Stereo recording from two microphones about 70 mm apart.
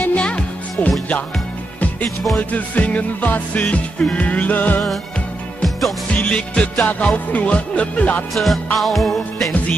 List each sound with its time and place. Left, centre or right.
0.0 s music: centre
2.5 s music: left
5.6 s music: centre
6.1 s music: centre
8.7 s music: centre